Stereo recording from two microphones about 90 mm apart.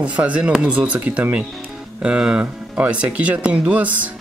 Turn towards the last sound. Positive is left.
turn(degrees=-15)  # may be behind; listen again after turning